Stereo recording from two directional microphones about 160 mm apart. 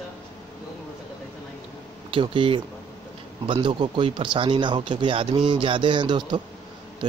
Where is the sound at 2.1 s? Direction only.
30° right (ahead or behind).